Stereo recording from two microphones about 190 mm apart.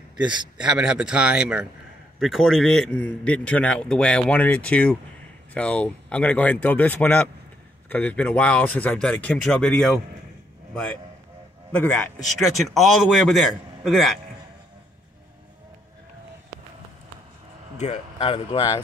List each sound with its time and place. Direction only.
0.3 s a man's voice: 5° right (ahead or behind)
17.7 s speech: 35° left (ahead or behind)